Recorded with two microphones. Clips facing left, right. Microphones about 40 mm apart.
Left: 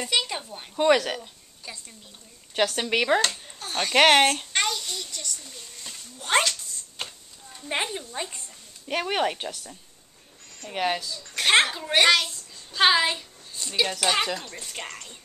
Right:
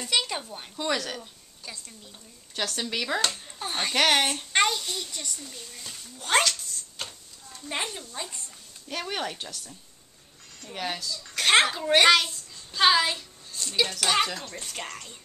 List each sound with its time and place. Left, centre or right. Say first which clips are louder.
0.0 s a child's voice: left 1 dB; centre
0.7 s speech: left 9 dB; left
1.2 s a woman's voice: left 1 dB; centre
2.5 s speech: left 7 dB; left
4.5 s a child's voice: right 3 dB; centre
5.4 s a sound: right 1 dB; centre; by 8.4 s left
8.8 s speech: left 6 dB; left
10.7 s speech: left 6 dB; left
11.3 s a child's voice: left 1 dB; centre
12.7 s a woman's voice: left 1 dB; centre
14.7 s music: even; centre